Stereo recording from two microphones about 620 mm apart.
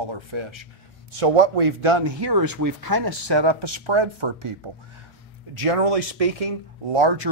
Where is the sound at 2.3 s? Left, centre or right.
Right.